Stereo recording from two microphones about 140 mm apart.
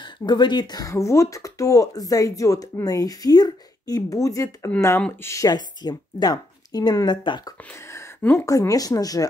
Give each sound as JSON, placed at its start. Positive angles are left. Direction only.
{"t": 0.0, "sound": "speech", "side_deg": 30}
{"t": 7.9, "sound": "speech", "side_deg": 20}